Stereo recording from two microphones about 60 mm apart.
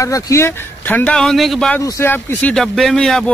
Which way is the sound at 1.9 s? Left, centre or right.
Left.